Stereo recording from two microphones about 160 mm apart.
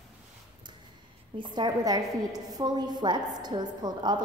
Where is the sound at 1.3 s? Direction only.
25° right (ahead or behind).